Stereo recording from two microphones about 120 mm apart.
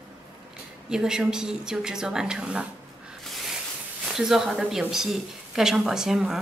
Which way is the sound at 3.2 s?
Centre (ahead or behind).